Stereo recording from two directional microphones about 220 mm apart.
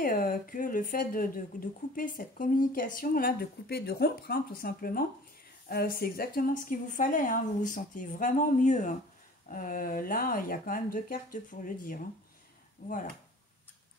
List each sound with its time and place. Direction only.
0.0 s speech: 40° left (ahead or behind)